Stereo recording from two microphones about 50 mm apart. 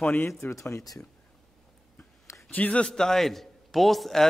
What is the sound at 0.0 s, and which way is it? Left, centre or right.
Speech, left.